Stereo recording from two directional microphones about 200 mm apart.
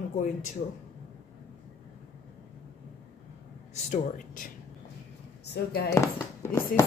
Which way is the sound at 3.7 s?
35° left (ahead or behind).